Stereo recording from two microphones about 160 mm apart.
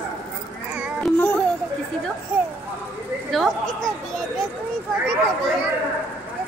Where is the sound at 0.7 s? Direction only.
5° right (ahead or behind).